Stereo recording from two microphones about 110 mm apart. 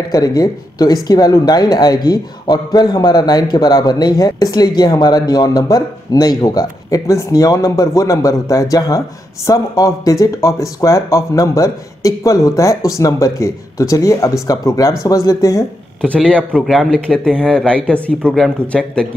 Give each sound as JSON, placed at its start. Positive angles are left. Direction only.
{"t": 0.1, "sound": "speech", "side_deg": 35}
{"t": 16.0, "sound": "speech", "side_deg": 10}